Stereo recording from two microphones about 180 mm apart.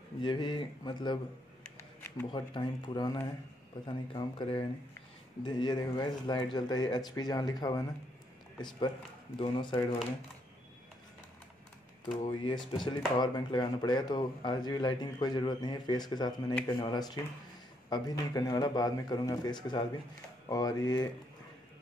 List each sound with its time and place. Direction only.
0.2 s speech: 25° left (ahead or behind)
1.6 s a sound: 10° left (ahead or behind)
2.2 s speech: 25° left (ahead or behind)
12.4 s speech: 25° left (ahead or behind)